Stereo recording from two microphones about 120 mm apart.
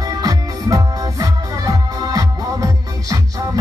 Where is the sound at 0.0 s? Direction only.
30° right (ahead or behind).